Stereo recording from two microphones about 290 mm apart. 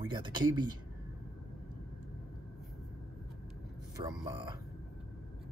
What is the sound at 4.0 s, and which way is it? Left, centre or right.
Speech, centre.